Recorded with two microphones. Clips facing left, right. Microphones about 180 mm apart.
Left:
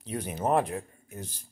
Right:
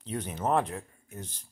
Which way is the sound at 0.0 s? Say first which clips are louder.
Left 2 dB; 10° left (ahead or behind).